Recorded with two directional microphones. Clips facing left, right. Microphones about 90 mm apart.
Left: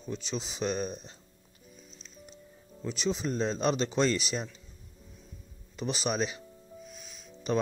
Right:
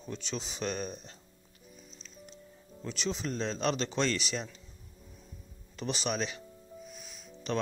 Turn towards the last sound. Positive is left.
turn(degrees=10)  # may be behind; listen again after turning